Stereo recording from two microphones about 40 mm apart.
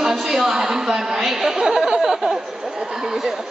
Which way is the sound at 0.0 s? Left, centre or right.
Centre.